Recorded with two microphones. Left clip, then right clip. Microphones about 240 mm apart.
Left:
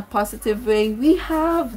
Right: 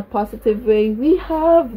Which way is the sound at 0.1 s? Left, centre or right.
Centre.